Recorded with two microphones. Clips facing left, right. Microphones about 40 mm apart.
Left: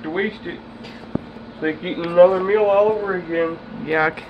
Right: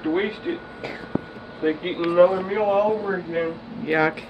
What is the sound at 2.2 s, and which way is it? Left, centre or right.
Speech, left.